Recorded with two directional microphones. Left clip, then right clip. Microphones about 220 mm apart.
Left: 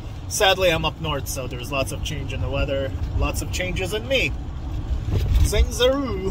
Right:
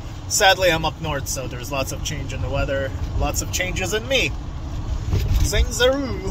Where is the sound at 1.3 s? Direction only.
20° right (ahead or behind).